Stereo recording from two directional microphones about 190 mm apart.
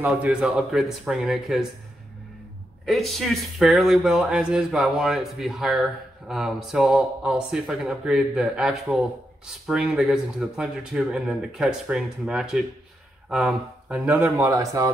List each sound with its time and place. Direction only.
0.0 s speech: 5° right (ahead or behind)
2.8 s speech: centre (ahead or behind)
14.4 s speech: 15° right (ahead or behind)